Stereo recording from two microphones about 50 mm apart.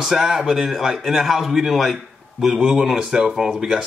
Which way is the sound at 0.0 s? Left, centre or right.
Centre.